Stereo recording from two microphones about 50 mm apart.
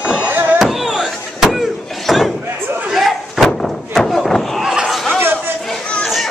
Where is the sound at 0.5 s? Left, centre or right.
Centre.